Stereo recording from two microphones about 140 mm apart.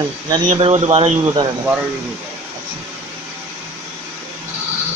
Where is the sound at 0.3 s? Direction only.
35° right (ahead or behind).